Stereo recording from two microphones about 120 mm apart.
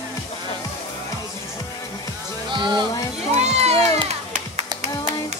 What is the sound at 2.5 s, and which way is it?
Music, 40° right (ahead or behind).